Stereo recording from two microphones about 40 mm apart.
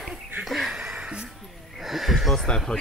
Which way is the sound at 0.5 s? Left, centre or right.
Centre.